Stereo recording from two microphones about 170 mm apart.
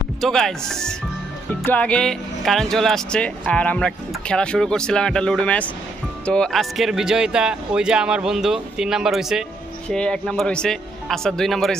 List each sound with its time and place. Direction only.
0.2 s speech: centre (ahead or behind)